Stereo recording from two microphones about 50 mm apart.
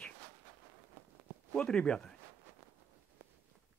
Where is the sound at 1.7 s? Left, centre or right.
Centre.